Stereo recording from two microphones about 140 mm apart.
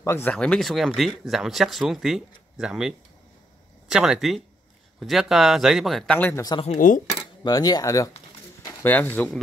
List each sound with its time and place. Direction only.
0.0 s speech: 15° left (ahead or behind); by 2.9 s 5° right (ahead or behind)
3.9 s speech: 5° right (ahead or behind)
6.1 s speech: 15° left (ahead or behind)
6.8 s speech: 70° left (ahead or behind)
7.2 s speech: 30° left (ahead or behind)
8.6 s speech: 15° left (ahead or behind)